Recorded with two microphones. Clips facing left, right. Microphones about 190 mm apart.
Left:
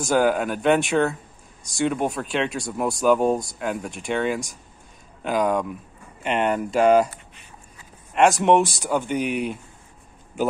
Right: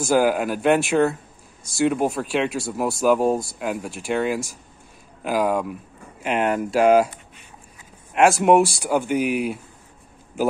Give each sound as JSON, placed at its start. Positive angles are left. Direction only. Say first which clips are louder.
{"t": 0.0, "sound": "speech", "louder": "right 1 dB", "side_deg": -5}